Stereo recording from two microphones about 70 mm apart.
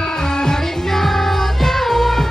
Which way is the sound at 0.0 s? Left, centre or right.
Centre.